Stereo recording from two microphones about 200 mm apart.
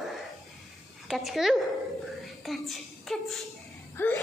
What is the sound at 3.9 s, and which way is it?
Gasp, 10° left (ahead or behind).